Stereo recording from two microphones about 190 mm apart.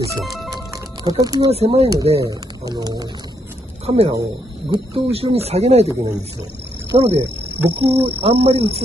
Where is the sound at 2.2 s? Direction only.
20° right (ahead or behind).